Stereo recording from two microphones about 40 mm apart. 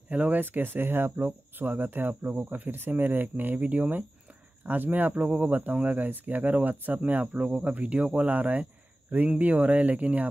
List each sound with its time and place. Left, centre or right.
0.1 s speech: right
0.4 s speech: right
8.3 s speech: right